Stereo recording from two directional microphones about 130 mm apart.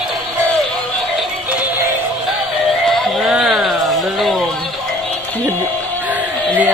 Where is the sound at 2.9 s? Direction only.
5° right (ahead or behind).